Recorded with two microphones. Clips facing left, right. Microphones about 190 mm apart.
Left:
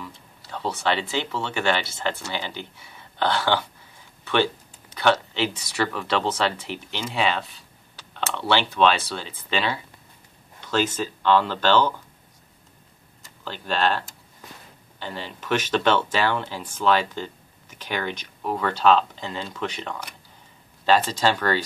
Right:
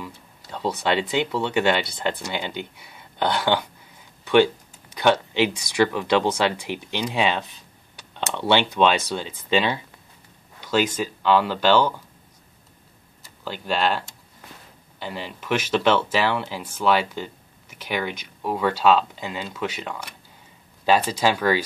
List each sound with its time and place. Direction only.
0.0 s a sound: 15° right (ahead or behind)
1.2 s speech: 15° right (ahead or behind)
13.4 s speech: 10° right (ahead or behind)